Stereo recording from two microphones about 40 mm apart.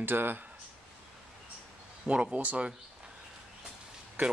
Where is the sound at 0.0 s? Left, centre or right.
Right.